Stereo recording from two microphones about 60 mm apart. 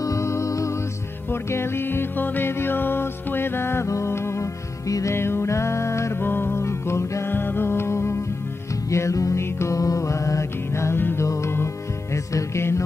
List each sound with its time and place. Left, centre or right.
0.0 s music: left
1.3 s music: left
4.8 s music: left
5.1 s music: left
6.2 s music: left
7.3 s music: left
8.9 s music: left
9.8 s music: left